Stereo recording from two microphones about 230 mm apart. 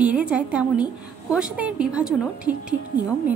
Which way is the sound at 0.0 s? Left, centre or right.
Centre.